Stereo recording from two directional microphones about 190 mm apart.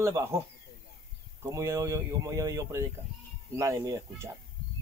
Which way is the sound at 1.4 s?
15° right (ahead or behind).